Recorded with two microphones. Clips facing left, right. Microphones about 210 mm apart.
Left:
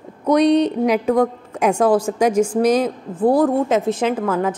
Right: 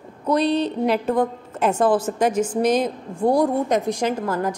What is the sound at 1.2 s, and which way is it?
A woman's voice, 10° left (ahead or behind).